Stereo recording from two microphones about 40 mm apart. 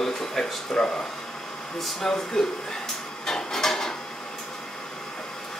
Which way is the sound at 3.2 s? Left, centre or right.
Centre.